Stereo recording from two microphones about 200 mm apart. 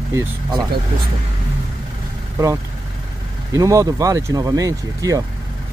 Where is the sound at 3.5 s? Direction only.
15° right (ahead or behind).